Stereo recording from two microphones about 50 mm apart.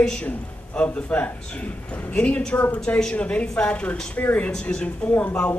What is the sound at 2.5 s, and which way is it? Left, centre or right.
Speech, left.